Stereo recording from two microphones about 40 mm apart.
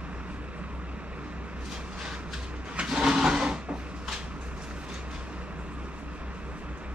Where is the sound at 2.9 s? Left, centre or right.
Centre.